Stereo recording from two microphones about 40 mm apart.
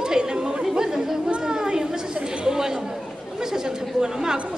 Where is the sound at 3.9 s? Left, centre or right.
Centre.